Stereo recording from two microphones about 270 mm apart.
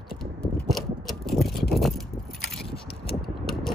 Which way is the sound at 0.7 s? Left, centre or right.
Centre.